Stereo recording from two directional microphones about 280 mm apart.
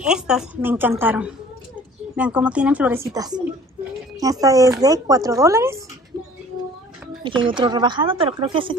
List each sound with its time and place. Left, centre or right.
0.0 s a woman's voice: centre
7.2 s speech: centre